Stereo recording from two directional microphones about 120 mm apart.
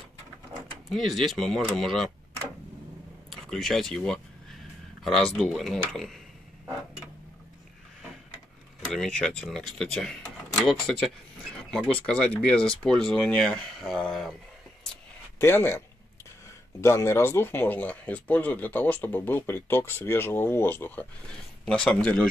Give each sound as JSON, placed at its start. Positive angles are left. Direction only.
{"t": 0.8, "sound": "speech", "side_deg": 0}
{"t": 3.3, "sound": "a sound", "side_deg": 0}
{"t": 5.0, "sound": "speech", "side_deg": 0}
{"t": 8.9, "sound": "speech", "side_deg": 5}
{"t": 15.3, "sound": "speech", "side_deg": 20}
{"t": 16.8, "sound": "speech", "side_deg": 20}